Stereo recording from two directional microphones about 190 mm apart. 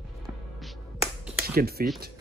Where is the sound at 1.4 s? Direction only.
55° right (ahead or behind).